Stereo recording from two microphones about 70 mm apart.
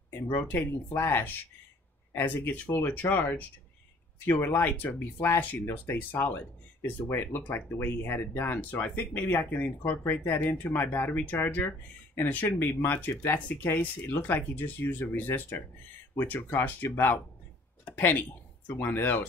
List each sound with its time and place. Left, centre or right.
0.1 s speech: left
17.8 s a sound: left
18.7 s speech: left